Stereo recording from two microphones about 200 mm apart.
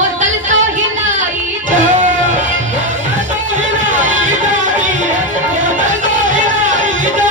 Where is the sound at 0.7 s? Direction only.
40° right (ahead or behind).